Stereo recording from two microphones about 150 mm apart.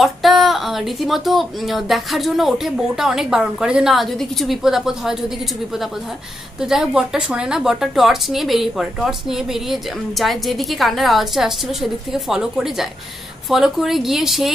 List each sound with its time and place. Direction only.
0.0 s a woman's voice: centre (ahead or behind)
6.6 s a woman's voice: 5° right (ahead or behind)